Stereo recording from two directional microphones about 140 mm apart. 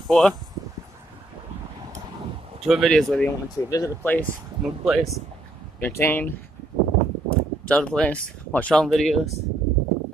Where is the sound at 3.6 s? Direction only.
25° left (ahead or behind).